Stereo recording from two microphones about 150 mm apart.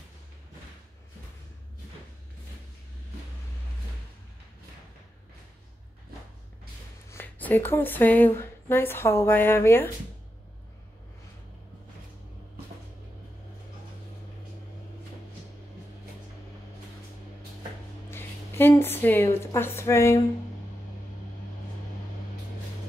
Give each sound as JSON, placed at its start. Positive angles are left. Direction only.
{"t": 7.1, "sound": "speech", "side_deg": 15}
{"t": 18.1, "sound": "a sound", "side_deg": 15}
{"t": 19.4, "sound": "a woman's voice", "side_deg": 15}